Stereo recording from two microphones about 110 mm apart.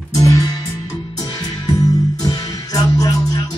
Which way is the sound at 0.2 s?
30° left (ahead or behind).